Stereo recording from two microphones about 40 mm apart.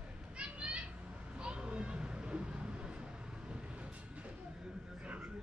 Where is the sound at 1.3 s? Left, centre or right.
Right.